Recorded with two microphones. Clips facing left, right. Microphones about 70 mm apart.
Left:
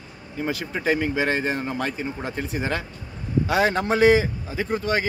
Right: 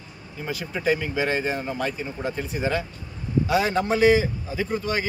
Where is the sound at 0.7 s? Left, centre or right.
Left.